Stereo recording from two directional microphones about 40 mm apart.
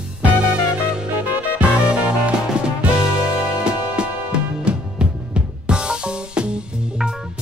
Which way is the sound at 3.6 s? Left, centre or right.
Right.